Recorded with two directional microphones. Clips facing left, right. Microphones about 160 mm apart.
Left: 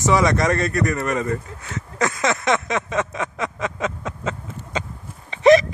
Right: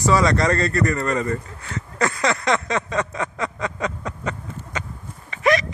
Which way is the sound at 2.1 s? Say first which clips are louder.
Left 1 dB; 20° left (ahead or behind).